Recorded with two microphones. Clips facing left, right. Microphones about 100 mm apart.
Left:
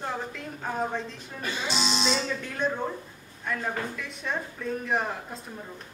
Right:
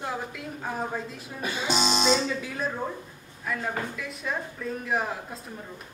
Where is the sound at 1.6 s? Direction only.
45° right (ahead or behind).